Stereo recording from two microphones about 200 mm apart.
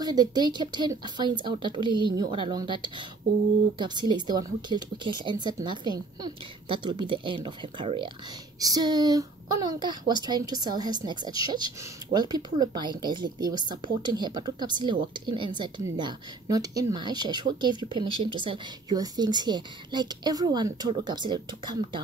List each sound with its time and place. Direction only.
0.0 s a woman's voice: 20° right (ahead or behind)